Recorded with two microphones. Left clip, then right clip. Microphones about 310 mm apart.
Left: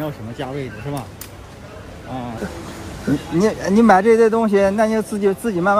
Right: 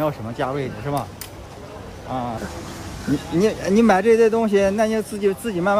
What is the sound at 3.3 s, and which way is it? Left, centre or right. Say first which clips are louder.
Speech: left 1 dB; centre.